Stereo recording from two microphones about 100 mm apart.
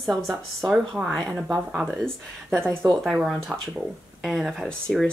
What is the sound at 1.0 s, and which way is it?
Speech, 20° right (ahead or behind).